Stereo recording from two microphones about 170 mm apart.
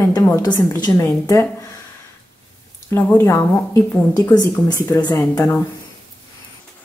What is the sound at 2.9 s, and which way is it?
Speech, 15° left (ahead or behind).